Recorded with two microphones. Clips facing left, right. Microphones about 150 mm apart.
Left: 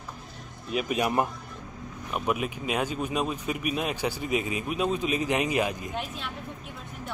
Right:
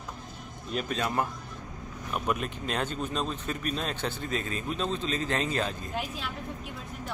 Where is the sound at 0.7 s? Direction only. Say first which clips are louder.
Left 4 dB; 10° left (ahead or behind).